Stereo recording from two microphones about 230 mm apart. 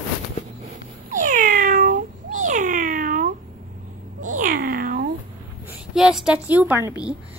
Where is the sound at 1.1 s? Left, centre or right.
Right.